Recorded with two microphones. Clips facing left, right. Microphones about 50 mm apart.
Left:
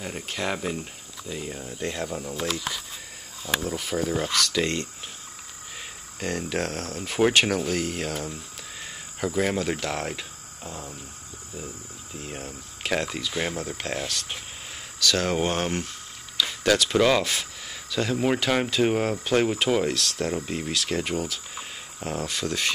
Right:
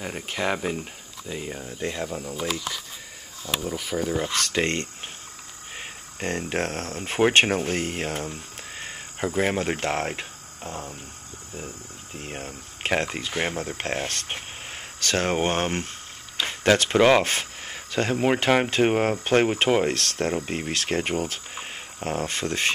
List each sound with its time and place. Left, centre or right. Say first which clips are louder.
0.0 s speech: right 2 dB; centre
4.3 s speech: even; right
16.3 s a sound: right 2 dB; right
18.7 s speech: right 2 dB; right